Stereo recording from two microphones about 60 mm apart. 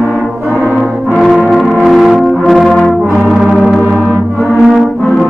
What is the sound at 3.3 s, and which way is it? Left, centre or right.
Gong, centre.